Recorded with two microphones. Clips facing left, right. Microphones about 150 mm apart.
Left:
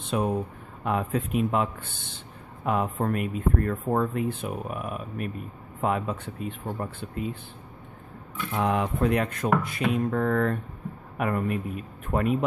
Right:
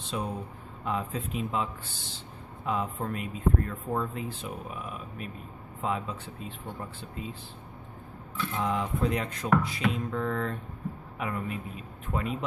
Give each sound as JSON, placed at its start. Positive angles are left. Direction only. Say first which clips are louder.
{"t": 0.0, "sound": "a man's voice", "louder": "left 7 dB", "side_deg": 60}
{"t": 8.5, "sound": "a man's voice", "louder": "left 5 dB", "side_deg": 65}